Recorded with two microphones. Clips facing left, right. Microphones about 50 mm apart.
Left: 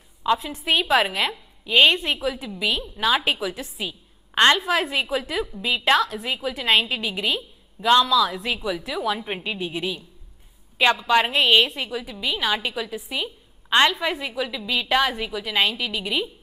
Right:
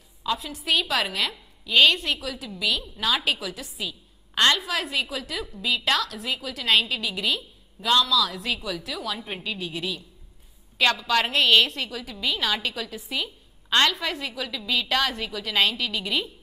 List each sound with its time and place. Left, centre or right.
0.2 s a woman's voice: left; by 16.3 s centre